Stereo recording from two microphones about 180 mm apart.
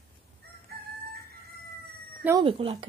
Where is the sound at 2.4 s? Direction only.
30° right (ahead or behind).